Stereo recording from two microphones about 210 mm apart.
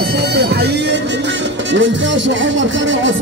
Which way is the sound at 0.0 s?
50° right (ahead or behind).